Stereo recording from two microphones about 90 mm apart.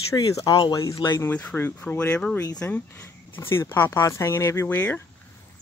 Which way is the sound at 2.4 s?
40° left (ahead or behind).